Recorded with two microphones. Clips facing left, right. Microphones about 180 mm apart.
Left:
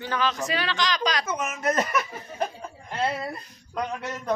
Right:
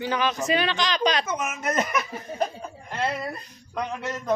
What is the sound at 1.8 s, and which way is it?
Speech, 10° right (ahead or behind).